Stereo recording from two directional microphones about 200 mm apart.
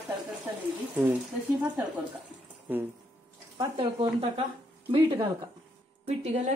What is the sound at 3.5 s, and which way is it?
Speech, 25° right (ahead or behind).